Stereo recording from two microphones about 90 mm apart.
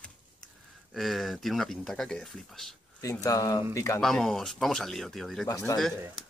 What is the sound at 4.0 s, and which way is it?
Speech, 5° left (ahead or behind).